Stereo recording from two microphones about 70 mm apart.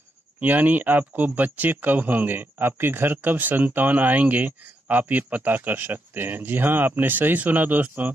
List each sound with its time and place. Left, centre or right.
0.4 s speech: right